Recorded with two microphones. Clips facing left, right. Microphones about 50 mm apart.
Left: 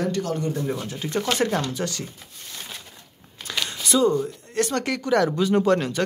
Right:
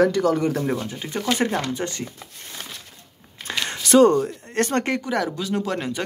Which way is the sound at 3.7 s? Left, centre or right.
Right.